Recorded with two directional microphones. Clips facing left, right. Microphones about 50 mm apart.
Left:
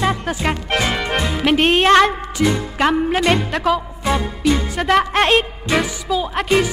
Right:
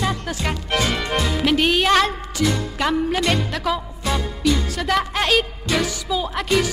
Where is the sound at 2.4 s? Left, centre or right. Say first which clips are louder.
Left 4 dB; left.